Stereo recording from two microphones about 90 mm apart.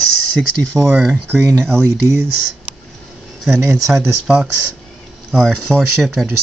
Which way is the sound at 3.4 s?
5° right (ahead or behind).